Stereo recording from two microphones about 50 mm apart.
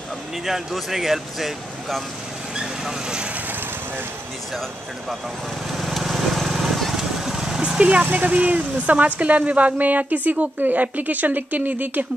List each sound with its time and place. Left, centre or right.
0.5 s speech: centre
2.5 s vehicle: centre
5.7 s lawn mower: centre
7.8 s speech: right